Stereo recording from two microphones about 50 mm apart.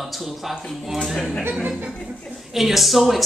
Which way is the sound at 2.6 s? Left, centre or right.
Centre.